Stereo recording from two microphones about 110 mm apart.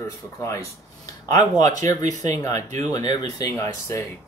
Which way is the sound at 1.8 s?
90° right.